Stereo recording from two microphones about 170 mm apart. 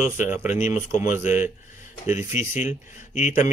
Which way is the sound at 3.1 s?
45° left (ahead or behind).